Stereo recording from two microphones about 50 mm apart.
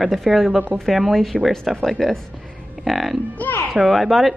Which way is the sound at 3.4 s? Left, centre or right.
Left.